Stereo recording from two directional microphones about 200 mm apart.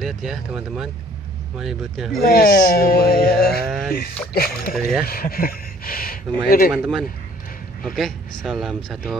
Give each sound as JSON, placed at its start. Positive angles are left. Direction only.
{"t": 0.0, "sound": "a man's voice", "side_deg": 0}
{"t": 2.1, "sound": "speech", "side_deg": 45}
{"t": 3.6, "sound": "speech", "side_deg": 0}
{"t": 4.3, "sound": "speech", "side_deg": 50}
{"t": 6.7, "sound": "a man's voice", "side_deg": -5}